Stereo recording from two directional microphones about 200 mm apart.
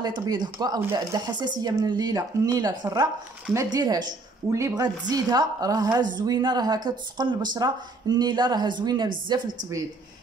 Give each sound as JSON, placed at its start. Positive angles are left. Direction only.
{"t": 0.0, "sound": "speech", "side_deg": -20}